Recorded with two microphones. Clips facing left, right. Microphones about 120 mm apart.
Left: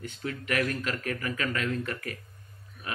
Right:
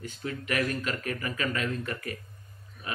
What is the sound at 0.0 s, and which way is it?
A man's voice, 5° right (ahead or behind).